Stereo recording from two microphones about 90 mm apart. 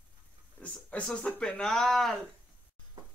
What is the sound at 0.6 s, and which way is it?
Speech, 15° left (ahead or behind).